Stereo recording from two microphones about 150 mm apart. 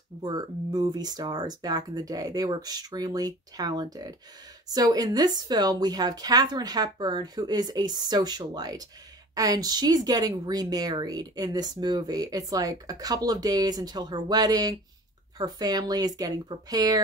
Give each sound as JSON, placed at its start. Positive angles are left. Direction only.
{"t": 0.2, "sound": "speech", "side_deg": -25}